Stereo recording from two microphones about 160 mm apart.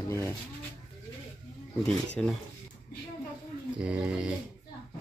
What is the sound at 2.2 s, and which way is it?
Speech, 5° left (ahead or behind).